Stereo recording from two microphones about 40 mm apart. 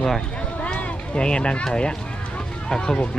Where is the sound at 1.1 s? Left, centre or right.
Left.